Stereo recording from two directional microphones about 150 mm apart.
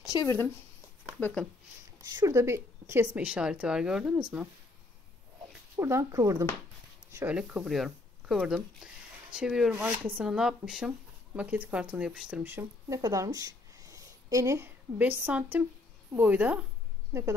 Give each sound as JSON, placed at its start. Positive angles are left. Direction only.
{"t": 0.1, "sound": "speech", "side_deg": 20}
{"t": 1.2, "sound": "speech", "side_deg": 5}
{"t": 2.1, "sound": "speech", "side_deg": -20}
{"t": 3.2, "sound": "speech", "side_deg": -5}
{"t": 5.8, "sound": "speech", "side_deg": -20}